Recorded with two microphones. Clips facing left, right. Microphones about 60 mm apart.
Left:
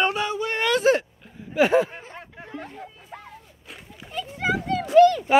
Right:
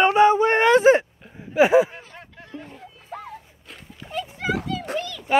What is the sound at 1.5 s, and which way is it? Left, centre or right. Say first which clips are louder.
Speech: right 3 dB; centre.